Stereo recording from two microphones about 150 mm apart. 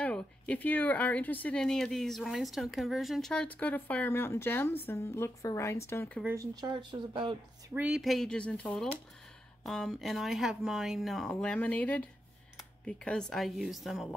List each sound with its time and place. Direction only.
0.0 s speech: 10° left (ahead or behind)
6.2 s speech: 20° right (ahead or behind)
7.7 s speech: 5° right (ahead or behind)